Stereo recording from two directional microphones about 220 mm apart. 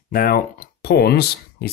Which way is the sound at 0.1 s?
40° left (ahead or behind).